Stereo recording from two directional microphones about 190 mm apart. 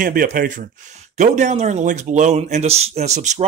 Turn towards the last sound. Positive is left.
turn(degrees=-35)  # may be behind; listen again after turning